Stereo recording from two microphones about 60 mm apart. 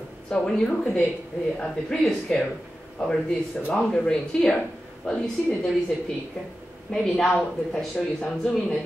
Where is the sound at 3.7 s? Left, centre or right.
Centre.